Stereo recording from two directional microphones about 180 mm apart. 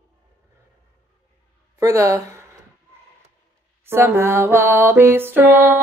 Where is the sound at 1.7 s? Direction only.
15° right (ahead or behind).